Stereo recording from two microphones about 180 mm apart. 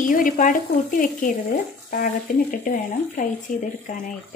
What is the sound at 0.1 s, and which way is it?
Speech, 45° left (ahead or behind).